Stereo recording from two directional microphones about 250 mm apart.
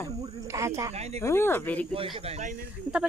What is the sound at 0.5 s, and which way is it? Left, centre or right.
Speech, centre.